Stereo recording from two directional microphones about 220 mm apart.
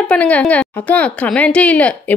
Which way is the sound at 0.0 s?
5° left (ahead or behind).